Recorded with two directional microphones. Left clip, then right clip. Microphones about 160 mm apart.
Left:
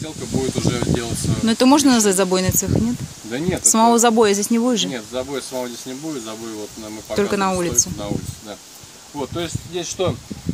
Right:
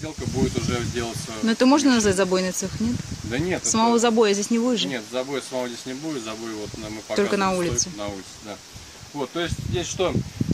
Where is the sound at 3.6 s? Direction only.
20° left (ahead or behind).